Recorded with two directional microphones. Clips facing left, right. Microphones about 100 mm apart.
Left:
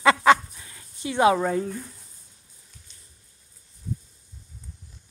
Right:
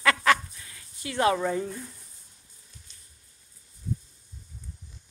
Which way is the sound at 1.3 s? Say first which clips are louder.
Left 3 dB; 5° left (ahead or behind).